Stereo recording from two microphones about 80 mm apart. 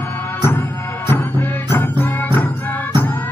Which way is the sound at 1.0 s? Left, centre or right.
Left.